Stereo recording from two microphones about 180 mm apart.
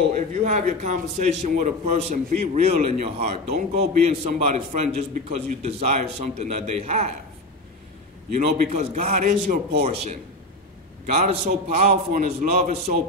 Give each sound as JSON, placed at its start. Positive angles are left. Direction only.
{"t": 0.1, "sound": "a man's voice", "side_deg": -40}
{"t": 8.3, "sound": "a man's voice", "side_deg": -45}
{"t": 11.1, "sound": "a man's voice", "side_deg": -40}